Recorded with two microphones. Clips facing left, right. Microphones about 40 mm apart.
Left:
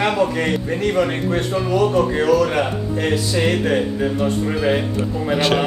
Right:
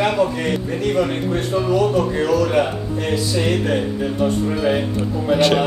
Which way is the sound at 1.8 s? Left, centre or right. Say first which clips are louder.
Left 3 dB; centre.